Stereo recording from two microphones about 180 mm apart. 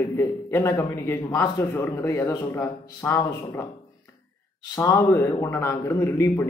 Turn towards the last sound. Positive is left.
turn(degrees=15)  # may be behind; listen again after turning